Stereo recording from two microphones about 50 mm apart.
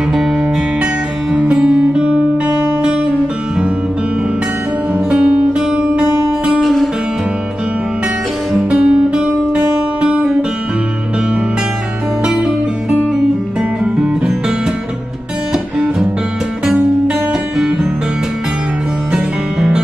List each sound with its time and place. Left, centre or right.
1.3 s music: right
5.1 s music: right
6.6 s guitar: centre
8.5 s music: right
13.6 s music: centre
19.1 s music: centre